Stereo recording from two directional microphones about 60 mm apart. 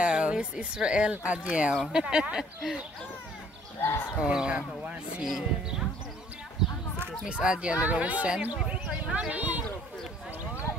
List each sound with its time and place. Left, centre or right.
0.0 s speech: centre
4.2 s speech: centre
5.2 s speech: centre
7.2 s speech: centre
8.6 s a sound: centre
9.3 s speech: right